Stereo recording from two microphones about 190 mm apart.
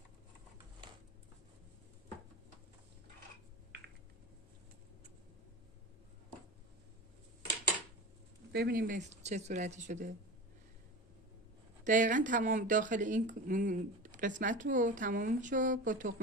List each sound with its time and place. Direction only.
0.8 s a sound: 25° right (ahead or behind)
8.5 s speech: 55° right (ahead or behind); by 10.1 s 40° right (ahead or behind)
11.8 s speech: 40° right (ahead or behind)